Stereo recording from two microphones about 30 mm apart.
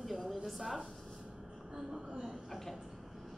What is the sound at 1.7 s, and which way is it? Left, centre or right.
Speech, right.